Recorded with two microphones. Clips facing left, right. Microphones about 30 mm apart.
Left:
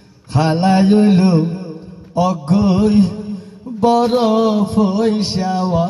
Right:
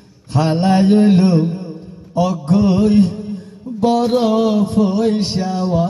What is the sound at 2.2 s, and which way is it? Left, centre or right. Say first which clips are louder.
Mantra: even; centre.